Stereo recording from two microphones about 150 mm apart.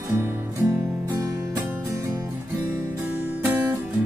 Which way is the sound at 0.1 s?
20° right (ahead or behind).